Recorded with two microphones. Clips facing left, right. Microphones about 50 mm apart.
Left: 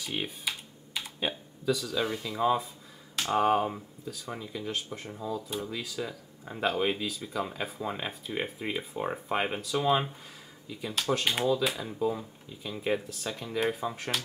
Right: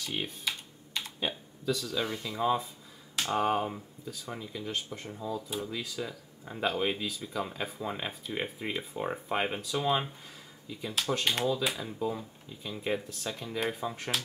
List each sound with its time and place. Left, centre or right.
0.0 s speech: centre